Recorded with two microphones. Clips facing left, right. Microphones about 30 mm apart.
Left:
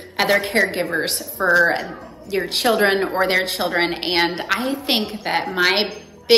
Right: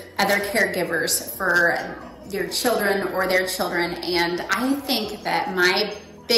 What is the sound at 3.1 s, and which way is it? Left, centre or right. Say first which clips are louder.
Speech: left 2 dB; left.